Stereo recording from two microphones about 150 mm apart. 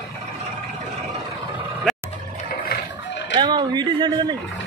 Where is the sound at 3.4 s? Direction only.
30° right (ahead or behind).